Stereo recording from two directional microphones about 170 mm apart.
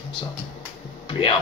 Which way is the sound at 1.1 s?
35° left (ahead or behind).